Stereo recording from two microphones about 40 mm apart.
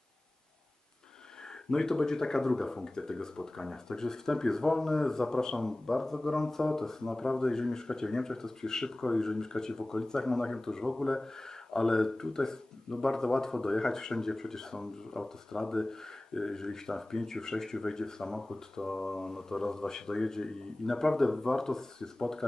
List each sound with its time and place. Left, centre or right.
1.7 s speech: centre